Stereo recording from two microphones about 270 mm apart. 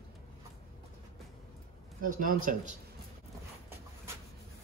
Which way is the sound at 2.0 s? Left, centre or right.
Right.